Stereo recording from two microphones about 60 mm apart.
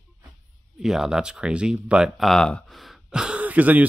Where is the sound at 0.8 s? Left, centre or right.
Centre.